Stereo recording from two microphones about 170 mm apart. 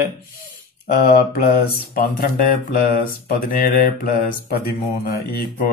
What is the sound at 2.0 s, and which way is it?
Speech, 60° left (ahead or behind).